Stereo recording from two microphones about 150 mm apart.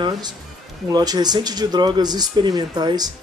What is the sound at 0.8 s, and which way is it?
Speech, 25° right (ahead or behind).